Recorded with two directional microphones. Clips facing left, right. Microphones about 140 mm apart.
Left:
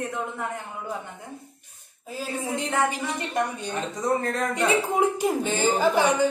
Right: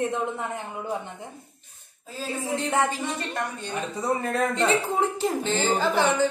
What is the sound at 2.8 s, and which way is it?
A woman's voice, 15° left (ahead or behind).